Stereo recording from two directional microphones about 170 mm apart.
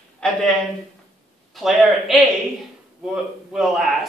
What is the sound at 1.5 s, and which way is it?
A man's voice, centre (ahead or behind).